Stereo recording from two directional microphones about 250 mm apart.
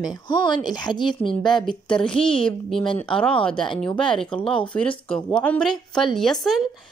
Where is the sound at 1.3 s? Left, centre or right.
Centre.